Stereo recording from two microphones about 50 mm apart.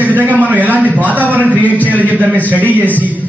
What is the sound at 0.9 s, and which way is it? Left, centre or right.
A man's voice, right.